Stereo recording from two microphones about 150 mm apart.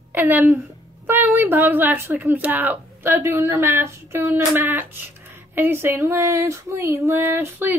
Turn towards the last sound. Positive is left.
turn(degrees=-15)  # may be behind; listen again after turning